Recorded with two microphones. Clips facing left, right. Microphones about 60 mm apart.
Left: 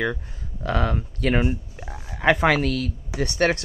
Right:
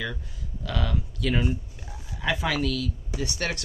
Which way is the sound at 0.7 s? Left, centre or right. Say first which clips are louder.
Left 6 dB; left.